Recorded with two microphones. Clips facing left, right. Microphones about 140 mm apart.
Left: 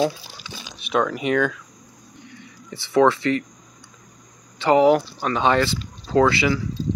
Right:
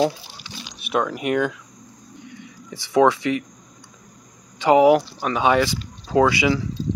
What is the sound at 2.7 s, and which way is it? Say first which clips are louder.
Speech: even; 15° right (ahead or behind).